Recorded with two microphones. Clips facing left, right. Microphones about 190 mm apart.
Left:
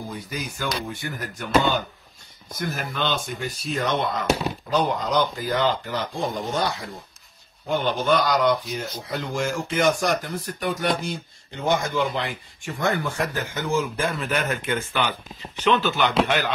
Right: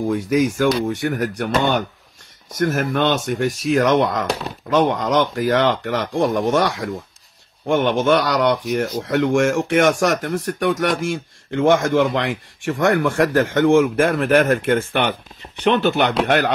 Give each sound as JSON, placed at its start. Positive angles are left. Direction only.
{"t": 0.0, "sound": "speech", "side_deg": -85}
{"t": 0.9, "sound": "speech", "side_deg": -75}
{"t": 2.5, "sound": "speech", "side_deg": -80}
{"t": 4.3, "sound": "speech", "side_deg": 5}
{"t": 4.6, "sound": "speech", "side_deg": -90}